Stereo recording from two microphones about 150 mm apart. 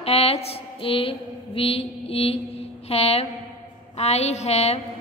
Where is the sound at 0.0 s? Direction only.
40° left (ahead or behind).